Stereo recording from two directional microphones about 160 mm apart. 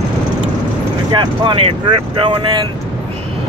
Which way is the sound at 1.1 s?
30° right (ahead or behind).